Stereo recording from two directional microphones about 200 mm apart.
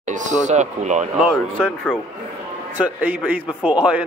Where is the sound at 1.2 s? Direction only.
5° left (ahead or behind).